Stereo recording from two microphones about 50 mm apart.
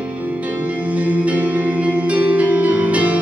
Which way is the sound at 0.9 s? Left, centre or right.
Right.